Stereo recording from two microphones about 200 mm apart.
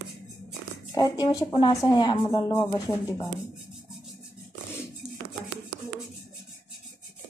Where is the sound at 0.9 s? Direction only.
20° left (ahead or behind).